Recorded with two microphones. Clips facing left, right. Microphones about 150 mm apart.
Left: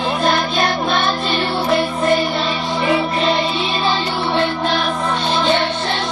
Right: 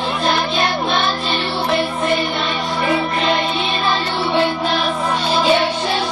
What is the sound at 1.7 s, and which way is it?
Music, 40° left (ahead or behind).